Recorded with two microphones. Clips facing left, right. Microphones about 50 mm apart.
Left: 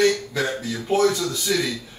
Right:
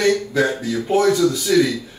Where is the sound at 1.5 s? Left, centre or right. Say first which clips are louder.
Right 7 dB; centre.